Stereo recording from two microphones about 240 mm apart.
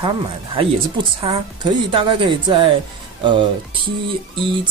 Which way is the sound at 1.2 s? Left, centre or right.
Right.